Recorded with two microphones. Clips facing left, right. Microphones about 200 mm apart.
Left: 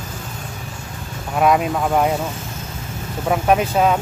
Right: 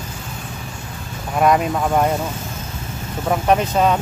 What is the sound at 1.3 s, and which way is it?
Speech, centre (ahead or behind).